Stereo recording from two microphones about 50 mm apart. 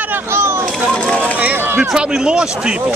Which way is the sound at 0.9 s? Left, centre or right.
Centre.